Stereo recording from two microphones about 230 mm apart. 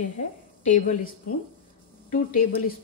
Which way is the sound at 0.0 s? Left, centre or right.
Left.